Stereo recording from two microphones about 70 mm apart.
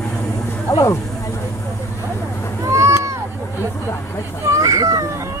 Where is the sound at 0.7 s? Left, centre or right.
Left.